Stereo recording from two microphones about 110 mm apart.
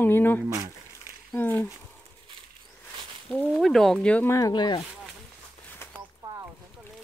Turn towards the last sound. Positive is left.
turn(degrees=-40)  # may be behind; listen again after turning